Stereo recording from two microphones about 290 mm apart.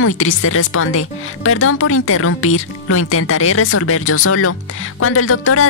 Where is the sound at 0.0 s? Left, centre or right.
Left.